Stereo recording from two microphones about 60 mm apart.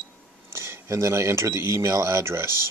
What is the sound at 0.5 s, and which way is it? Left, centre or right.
Speech, right.